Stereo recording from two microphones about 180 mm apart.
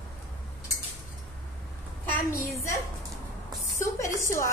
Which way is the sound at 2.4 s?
15° left (ahead or behind).